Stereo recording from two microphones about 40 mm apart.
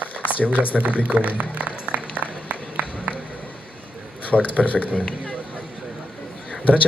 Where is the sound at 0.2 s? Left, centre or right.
Left.